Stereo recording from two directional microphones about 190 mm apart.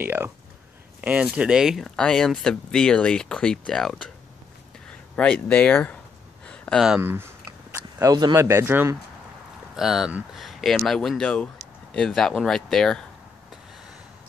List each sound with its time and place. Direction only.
0.0 s speech: 10° right (ahead or behind)
5.1 s speech: 5° left (ahead or behind)
6.4 s a sound: 5° left (ahead or behind)
7.0 s speech: 10° right (ahead or behind)
9.8 s speech: centre (ahead or behind)